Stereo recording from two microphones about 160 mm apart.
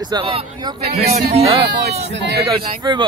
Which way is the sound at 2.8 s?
25° right (ahead or behind).